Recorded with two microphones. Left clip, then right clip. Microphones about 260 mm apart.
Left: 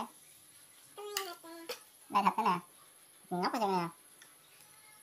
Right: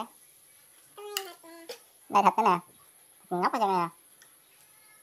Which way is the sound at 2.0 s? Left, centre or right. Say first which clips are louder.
Right 7 dB; centre.